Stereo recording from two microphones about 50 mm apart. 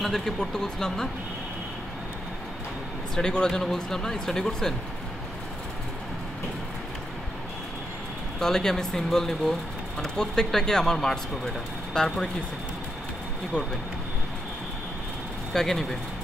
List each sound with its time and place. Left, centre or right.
0.0 s speech: centre
3.2 s speech: centre
8.4 s speech: centre
15.5 s speech: centre